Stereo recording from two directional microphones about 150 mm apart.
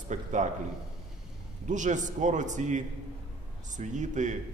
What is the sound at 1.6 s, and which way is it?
A man's voice, 55° right (ahead or behind).